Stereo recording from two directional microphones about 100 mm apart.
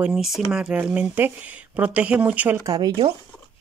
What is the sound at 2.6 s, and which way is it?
Speech, 35° right (ahead or behind).